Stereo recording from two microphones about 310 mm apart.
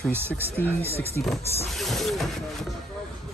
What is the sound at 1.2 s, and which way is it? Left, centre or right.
Speech, centre.